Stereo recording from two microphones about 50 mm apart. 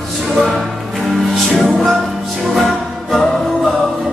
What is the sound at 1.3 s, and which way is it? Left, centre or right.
Music, centre.